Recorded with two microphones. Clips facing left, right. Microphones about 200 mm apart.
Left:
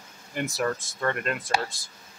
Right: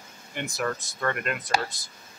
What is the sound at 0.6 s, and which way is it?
Speech, 25° left (ahead or behind).